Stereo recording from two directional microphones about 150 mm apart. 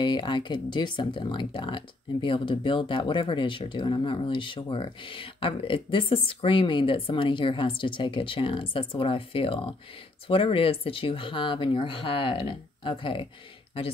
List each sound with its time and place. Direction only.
0.0 s speech: 30° left (ahead or behind)